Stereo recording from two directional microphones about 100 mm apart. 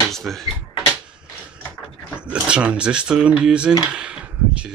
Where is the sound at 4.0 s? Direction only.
10° right (ahead or behind).